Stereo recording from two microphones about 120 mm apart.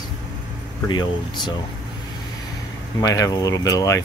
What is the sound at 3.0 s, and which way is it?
Speech, 25° left (ahead or behind).